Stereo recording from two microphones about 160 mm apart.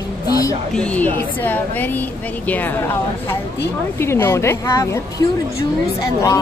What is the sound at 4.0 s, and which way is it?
Speech, 15° left (ahead or behind).